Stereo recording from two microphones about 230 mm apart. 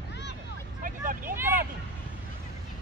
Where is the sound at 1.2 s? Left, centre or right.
Centre.